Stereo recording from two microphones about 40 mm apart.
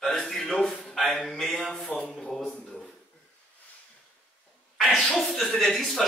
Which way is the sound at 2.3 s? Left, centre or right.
Centre.